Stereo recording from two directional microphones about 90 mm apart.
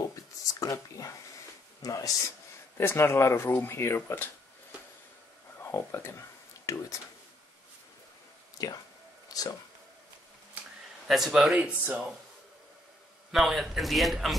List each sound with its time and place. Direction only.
0.1 s a sound: 40° left (ahead or behind)
1.8 s speech: 40° left (ahead or behind)
2.8 s speech: 25° left (ahead or behind)
5.6 s a sound: 25° left (ahead or behind)
8.6 s speech: 40° left (ahead or behind)
11.1 s a man's voice: centre (ahead or behind)
13.3 s a man's voice: centre (ahead or behind)